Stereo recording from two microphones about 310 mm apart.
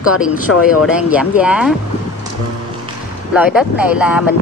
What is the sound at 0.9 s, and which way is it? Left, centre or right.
Speech, centre.